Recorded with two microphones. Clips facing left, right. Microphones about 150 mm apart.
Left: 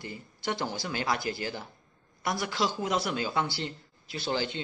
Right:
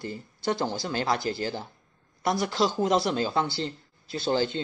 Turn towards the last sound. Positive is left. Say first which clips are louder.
# right 5 dB
turn(degrees=-35)  # may be behind; listen again after turning